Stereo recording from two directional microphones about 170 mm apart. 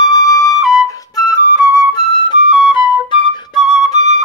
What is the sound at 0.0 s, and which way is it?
Flute, 20° left (ahead or behind).